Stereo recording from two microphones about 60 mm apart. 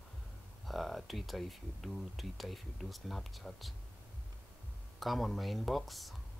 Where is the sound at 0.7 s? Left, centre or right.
Centre.